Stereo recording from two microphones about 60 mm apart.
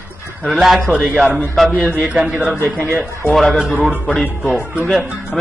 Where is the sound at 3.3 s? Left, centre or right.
Centre.